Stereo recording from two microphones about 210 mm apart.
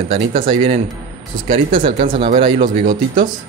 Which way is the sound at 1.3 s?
25° right (ahead or behind).